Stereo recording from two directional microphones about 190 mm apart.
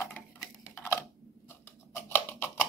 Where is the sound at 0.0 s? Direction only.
10° left (ahead or behind).